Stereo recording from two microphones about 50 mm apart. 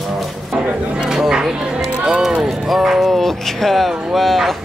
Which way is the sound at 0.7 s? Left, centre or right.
Right.